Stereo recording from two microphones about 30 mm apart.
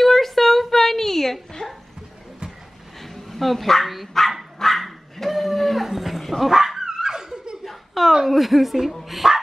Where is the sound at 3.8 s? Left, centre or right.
Centre.